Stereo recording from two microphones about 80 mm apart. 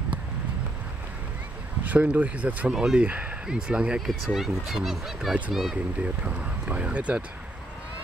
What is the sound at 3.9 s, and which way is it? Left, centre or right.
Speech, centre.